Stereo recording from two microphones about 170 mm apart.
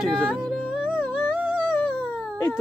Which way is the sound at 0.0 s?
5° left (ahead or behind).